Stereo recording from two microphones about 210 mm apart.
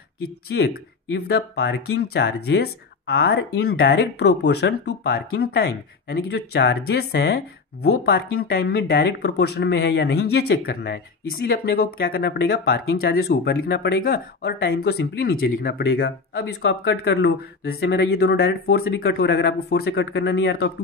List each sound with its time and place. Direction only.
0.5 s speech: 60° left (ahead or behind)